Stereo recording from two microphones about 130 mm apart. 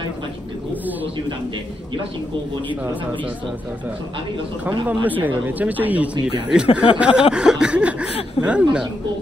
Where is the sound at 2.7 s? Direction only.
15° right (ahead or behind).